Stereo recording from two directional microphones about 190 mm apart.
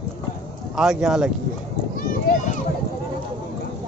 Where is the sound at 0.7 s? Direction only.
Centre (ahead or behind).